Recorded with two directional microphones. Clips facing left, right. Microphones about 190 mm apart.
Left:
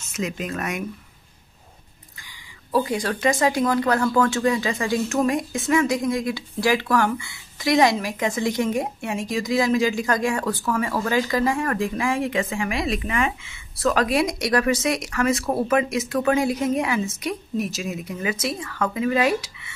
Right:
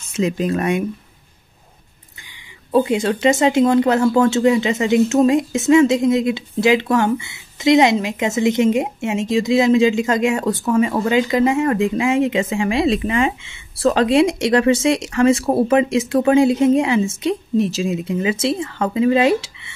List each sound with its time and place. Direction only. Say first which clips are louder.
0.1 s speech: right 9 dB; 30° right (ahead or behind)
2.7 s speech: right 6 dB; 25° right (ahead or behind)